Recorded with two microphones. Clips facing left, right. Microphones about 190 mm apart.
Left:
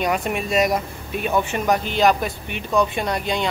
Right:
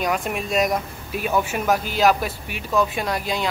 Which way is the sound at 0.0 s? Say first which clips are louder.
Left 2 dB; centre (ahead or behind).